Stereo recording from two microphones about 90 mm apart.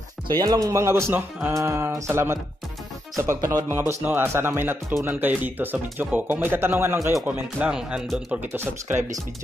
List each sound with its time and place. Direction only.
0.4 s speech: 40° right (ahead or behind); by 7.7 s 20° right (ahead or behind)
7.7 s speech: 5° right (ahead or behind)
8.4 s speech: 25° right (ahead or behind)